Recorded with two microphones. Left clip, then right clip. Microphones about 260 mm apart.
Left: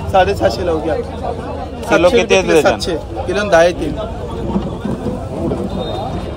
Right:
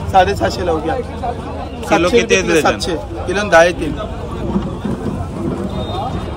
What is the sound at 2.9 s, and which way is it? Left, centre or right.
A man's voice, right.